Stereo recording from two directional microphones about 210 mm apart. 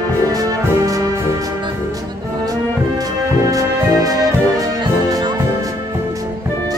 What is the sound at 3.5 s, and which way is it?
Music, 15° right (ahead or behind).